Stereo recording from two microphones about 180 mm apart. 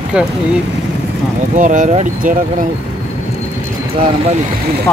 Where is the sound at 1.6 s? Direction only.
45° right (ahead or behind).